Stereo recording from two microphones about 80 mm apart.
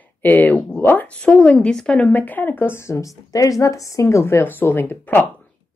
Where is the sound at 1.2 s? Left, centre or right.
Centre.